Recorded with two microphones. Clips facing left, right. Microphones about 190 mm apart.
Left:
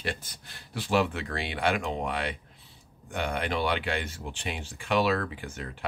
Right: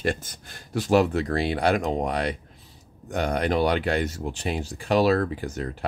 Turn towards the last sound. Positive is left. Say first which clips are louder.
# right 8 dB
turn(degrees=-40)  # may be behind; listen again after turning